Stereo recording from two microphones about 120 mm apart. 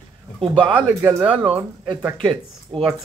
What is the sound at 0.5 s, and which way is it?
Speech, 45° right (ahead or behind).